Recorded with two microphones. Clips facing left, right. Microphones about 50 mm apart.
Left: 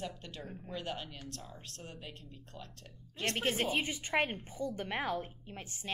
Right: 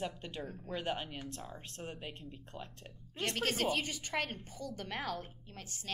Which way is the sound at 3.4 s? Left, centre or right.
Left.